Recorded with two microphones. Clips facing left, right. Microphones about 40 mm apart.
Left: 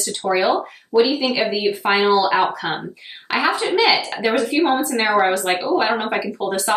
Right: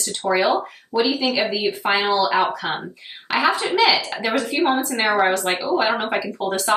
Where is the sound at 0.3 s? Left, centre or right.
Centre.